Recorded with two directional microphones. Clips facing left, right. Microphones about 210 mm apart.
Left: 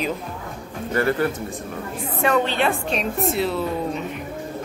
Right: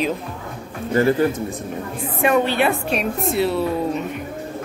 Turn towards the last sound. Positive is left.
turn(degrees=0)  # may be behind; listen again after turning